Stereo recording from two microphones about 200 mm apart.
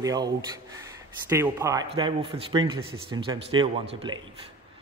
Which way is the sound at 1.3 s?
15° right (ahead or behind).